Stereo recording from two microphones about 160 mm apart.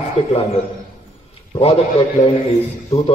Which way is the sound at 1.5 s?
35° left (ahead or behind).